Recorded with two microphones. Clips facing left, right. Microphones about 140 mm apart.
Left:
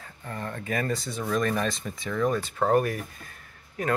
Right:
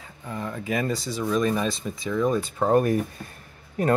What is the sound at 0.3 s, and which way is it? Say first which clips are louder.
Speech: right 3 dB; 5° right (ahead or behind).